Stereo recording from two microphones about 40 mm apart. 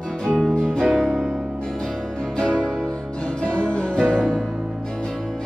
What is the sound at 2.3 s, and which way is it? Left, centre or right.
Music, left.